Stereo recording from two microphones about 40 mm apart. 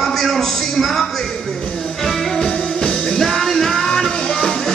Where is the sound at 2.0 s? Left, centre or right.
Centre.